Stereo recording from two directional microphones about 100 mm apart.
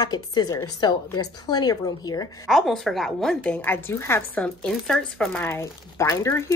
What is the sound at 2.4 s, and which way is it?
A woman's voice, centre (ahead or behind).